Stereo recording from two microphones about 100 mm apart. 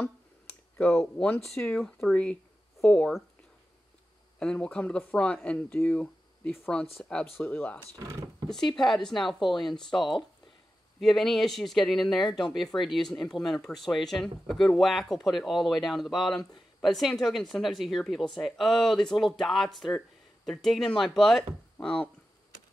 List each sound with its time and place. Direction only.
0.7 s speech: 10° left (ahead or behind)
4.4 s speech: 10° left (ahead or behind)
8.7 s speech: centre (ahead or behind)